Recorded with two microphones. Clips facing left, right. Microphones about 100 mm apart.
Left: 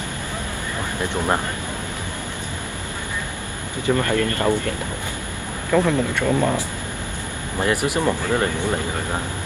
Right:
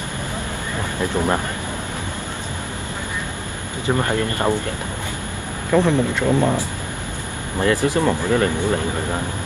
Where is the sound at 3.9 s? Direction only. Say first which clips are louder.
Left 1 dB; 25° right (ahead or behind).